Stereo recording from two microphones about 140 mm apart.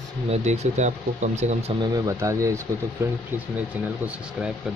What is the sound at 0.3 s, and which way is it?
Speech, 55° right (ahead or behind).